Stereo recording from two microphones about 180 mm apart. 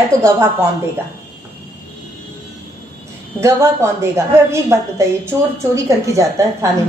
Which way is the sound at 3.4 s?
15° right (ahead or behind).